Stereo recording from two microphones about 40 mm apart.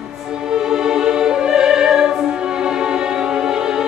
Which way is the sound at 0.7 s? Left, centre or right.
Centre.